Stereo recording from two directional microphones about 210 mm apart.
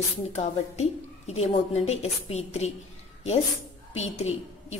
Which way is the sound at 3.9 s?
30° left (ahead or behind).